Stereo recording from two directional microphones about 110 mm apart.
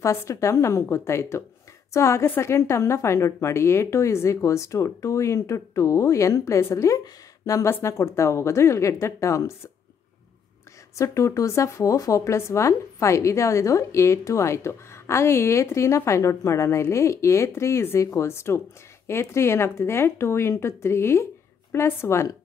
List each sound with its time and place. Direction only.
0.0 s speech: 25° left (ahead or behind)
11.0 s speech: 30° left (ahead or behind)